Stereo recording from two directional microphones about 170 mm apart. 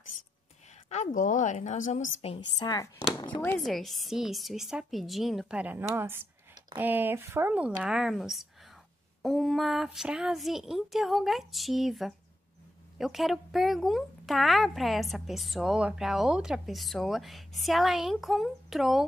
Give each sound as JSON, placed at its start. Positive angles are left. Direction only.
{"t": 0.8, "sound": "speech", "side_deg": 45}
{"t": 2.3, "sound": "a woman's voice", "side_deg": 25}
{"t": 3.4, "sound": "speech", "side_deg": 0}